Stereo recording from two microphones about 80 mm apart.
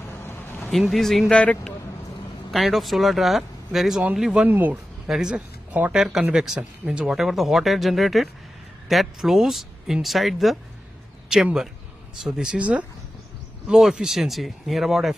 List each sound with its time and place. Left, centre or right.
0.2 s a sound: left
0.7 s speech: centre
1.3 s speech: centre
2.5 s speech: centre
4.5 s speech: right
5.0 s speech: centre
5.7 s speech: centre
5.9 s speech: centre